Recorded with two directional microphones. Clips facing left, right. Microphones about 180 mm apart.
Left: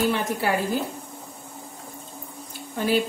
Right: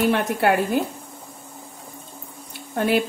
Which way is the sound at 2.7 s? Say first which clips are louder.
Right 3 dB; 60° right (ahead or behind).